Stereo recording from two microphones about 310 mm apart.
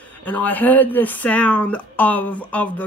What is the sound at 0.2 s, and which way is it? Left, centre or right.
Speech, centre.